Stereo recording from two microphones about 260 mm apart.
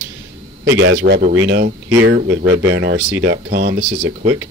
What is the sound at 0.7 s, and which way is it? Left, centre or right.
Speech, right.